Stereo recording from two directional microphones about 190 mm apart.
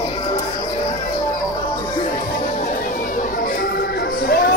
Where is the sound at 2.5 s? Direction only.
40° left (ahead or behind).